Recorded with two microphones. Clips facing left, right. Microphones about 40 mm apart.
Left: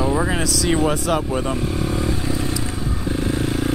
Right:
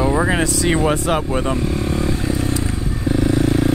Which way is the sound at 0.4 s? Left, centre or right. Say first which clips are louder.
Right 2 dB; right.